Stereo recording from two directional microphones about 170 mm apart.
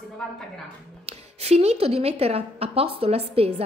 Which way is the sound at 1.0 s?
40° right (ahead or behind).